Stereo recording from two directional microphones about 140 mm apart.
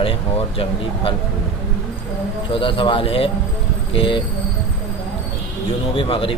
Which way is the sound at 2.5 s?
40° left (ahead or behind).